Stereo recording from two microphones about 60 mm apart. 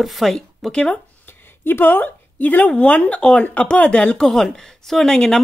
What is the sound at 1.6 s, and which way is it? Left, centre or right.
Speech, left.